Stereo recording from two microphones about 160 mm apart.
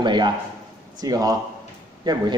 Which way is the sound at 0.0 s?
30° right (ahead or behind).